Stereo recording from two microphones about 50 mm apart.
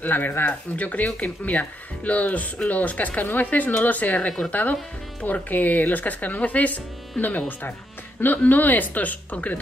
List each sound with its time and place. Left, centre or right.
0.0 s speech: left
0.7 s speech: left